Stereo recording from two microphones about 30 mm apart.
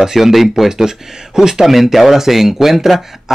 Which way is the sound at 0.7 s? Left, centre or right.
Centre.